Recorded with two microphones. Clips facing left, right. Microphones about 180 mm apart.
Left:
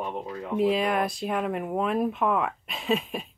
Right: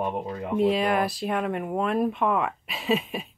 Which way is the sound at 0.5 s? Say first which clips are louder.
Right 1 dB; centre (ahead or behind).